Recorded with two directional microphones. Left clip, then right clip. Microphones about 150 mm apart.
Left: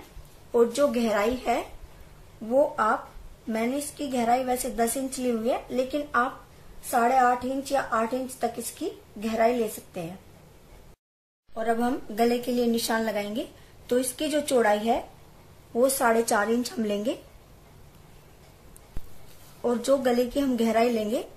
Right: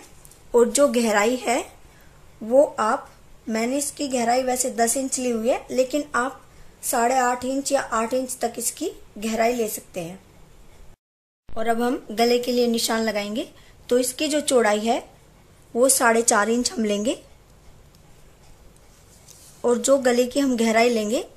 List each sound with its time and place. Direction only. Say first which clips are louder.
0.5 s a woman's voice: right 5 dB; 55° right (ahead or behind)
11.5 s speech: right 3 dB; 45° right (ahead or behind)
19.6 s speech: right 5 dB; 45° right (ahead or behind)